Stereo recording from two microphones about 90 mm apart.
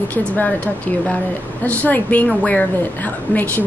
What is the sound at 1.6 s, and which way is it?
A woman's voice, 15° left (ahead or behind).